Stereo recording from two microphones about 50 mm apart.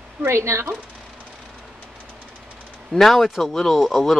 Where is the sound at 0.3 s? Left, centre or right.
Right.